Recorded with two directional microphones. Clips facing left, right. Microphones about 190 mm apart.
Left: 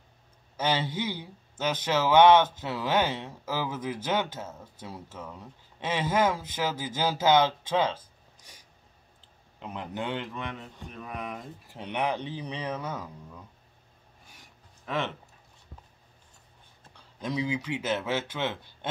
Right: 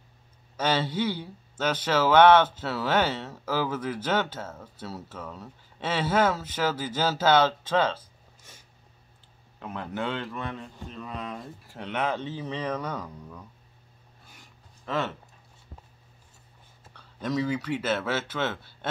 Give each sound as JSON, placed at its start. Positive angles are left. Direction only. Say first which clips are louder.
{"t": 0.6, "sound": "speech", "louder": "right 2 dB", "side_deg": 15}
{"t": 9.6, "sound": "speech", "louder": "right 2 dB", "side_deg": 15}
{"t": 14.9, "sound": "speech", "louder": "right 2 dB", "side_deg": 15}
{"t": 16.9, "sound": "speech", "louder": "right 3 dB", "side_deg": 15}